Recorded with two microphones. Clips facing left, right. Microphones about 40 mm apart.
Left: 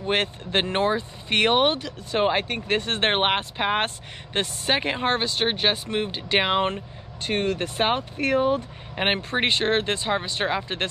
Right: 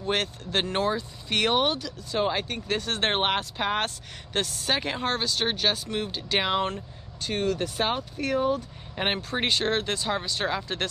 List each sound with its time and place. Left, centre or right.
0.0 s speech: left